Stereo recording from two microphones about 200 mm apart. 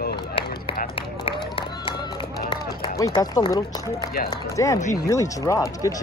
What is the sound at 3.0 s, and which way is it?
A man's voice, 20° left (ahead or behind).